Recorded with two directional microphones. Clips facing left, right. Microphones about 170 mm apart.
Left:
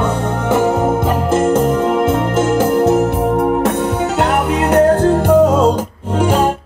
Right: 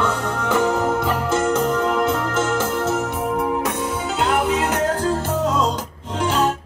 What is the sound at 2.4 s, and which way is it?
Music, 55° left (ahead or behind).